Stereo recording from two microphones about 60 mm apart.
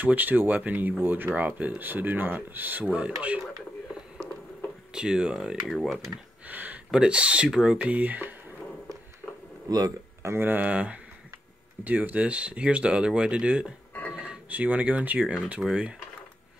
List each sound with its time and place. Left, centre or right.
0.0 s speech: right
4.9 s speech: centre
5.7 s speech: centre
6.4 s a sound: right
6.9 s speech: centre
9.7 s speech: right
10.2 s speech: right
10.7 s speech: right